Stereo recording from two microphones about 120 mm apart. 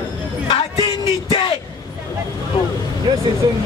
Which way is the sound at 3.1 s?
40° right (ahead or behind).